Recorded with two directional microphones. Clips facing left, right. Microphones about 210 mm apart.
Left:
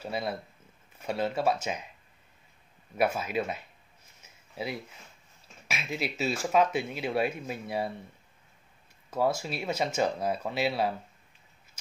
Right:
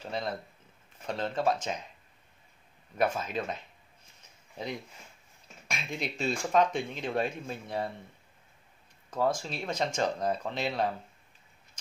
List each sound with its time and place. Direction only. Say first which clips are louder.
0.0 s speech: left 2 dB; 10° left (ahead or behind)
3.0 s speech: left 2 dB; 10° left (ahead or behind)
4.2 s a sound: left 3 dB; 5° left (ahead or behind)
5.7 s speech: left 2 dB; 5° left (ahead or behind)
9.1 s speech: left 1 dB; 10° left (ahead or behind)